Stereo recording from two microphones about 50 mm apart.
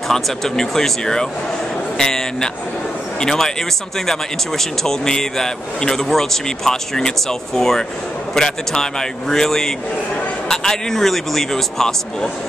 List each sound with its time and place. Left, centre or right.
0.1 s a man's voice: centre